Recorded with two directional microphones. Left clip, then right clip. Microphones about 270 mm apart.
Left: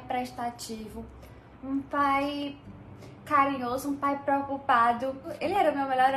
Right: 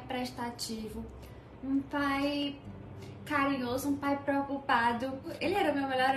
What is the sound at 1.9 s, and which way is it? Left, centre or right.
Speech, centre.